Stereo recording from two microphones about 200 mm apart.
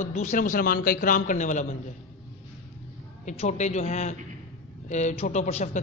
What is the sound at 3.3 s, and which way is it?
A man's voice, 35° left (ahead or behind).